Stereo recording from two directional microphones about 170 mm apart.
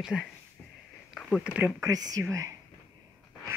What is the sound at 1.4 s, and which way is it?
Speech, 10° right (ahead or behind).